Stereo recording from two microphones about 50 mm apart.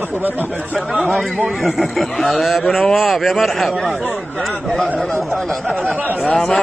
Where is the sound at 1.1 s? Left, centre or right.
Centre.